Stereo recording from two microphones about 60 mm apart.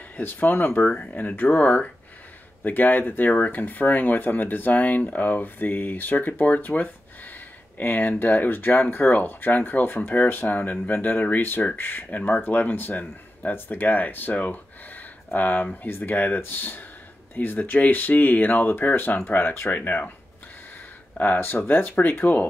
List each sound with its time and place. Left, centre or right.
0.2 s speech: left
21.2 s speech: left